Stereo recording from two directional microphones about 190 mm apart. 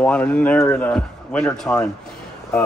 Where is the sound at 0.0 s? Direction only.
5° left (ahead or behind).